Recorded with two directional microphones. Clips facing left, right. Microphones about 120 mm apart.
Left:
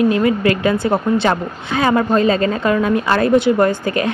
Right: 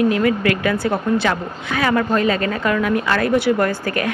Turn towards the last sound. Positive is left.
turn(degrees=20)  # may be behind; listen again after turning